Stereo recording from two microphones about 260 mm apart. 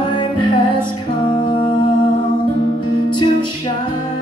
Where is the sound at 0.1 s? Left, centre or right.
Centre.